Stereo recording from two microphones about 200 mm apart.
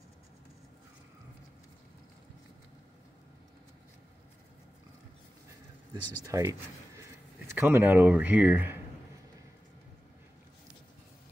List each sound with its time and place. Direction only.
6.2 s speech: 15° right (ahead or behind)